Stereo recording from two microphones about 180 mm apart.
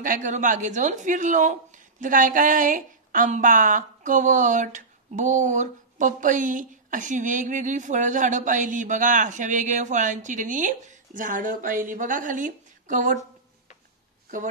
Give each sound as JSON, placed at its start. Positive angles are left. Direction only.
{"t": 0.0, "sound": "speech", "side_deg": -45}